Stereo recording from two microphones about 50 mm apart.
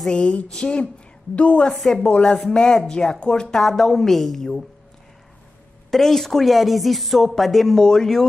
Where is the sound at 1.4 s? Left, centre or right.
Left.